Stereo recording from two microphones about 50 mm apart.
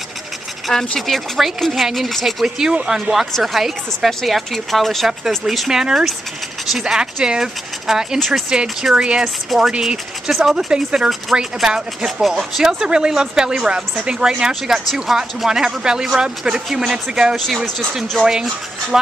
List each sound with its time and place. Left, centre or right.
0.9 s speech: centre
1.7 s speech: centre
2.0 s speech: centre
2.4 s speech: centre
5.7 s speech: centre
9.2 s speech: centre
11.3 s speech: centre
12.2 s speech: centre
14.5 s speech: centre
15.0 s speech: centre